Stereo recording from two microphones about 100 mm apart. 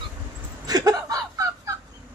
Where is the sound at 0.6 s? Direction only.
40° right (ahead or behind).